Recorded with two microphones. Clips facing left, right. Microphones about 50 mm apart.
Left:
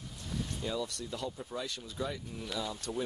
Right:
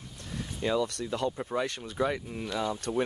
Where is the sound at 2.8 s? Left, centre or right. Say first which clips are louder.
Right 6 dB; right.